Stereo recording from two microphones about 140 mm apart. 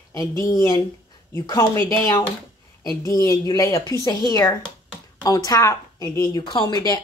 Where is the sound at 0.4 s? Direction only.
25° left (ahead or behind).